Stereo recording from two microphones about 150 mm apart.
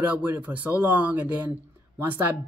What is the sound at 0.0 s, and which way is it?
Speech, 10° right (ahead or behind).